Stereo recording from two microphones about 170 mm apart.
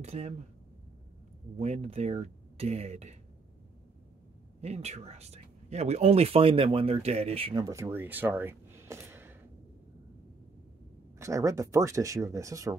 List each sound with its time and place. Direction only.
0.0 s speech: 40° right (ahead or behind)
1.6 s speech: 40° right (ahead or behind)
4.6 s speech: 40° right (ahead or behind); by 9.4 s 15° right (ahead or behind)
11.1 s speech: 20° right (ahead or behind)